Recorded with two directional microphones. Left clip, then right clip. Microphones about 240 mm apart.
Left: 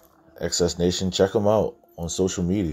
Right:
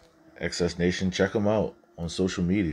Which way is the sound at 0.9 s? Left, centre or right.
Centre.